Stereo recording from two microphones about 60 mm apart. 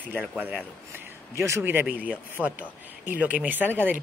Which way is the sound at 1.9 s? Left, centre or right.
Right.